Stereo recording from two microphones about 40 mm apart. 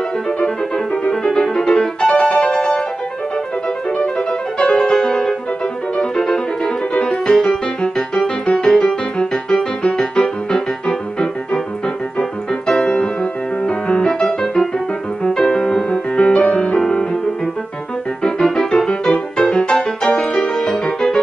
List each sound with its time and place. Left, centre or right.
1.2 s music: centre
4.0 s music: centre
18.2 s music: centre